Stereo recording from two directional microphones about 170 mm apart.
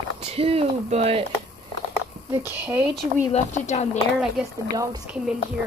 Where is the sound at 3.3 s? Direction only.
40° left (ahead or behind).